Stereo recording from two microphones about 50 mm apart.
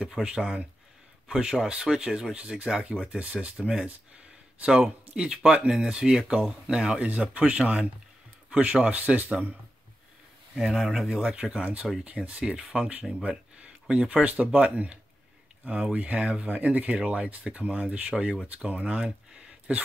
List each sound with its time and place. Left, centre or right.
0.0 s speech: centre
2.6 s speech: right
5.1 s speech: centre
7.0 s speech: right
10.5 s speech: centre